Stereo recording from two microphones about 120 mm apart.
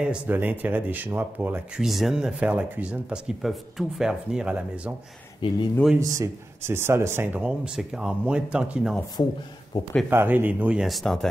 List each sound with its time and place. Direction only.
0.0 s speech: 10° right (ahead or behind)
1.8 s speech: centre (ahead or behind)
5.4 s speech: 40° left (ahead or behind)
5.9 s speech: 25° right (ahead or behind)
7.4 s speech: 5° right (ahead or behind)
10.0 s speech: 15° right (ahead or behind); by 11.2 s centre (ahead or behind)